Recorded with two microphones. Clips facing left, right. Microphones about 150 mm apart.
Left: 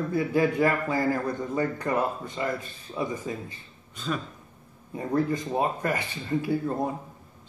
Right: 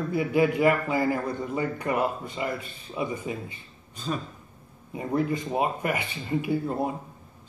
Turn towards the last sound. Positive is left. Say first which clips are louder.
# even
turn(degrees=-15)  # may be behind; listen again after turning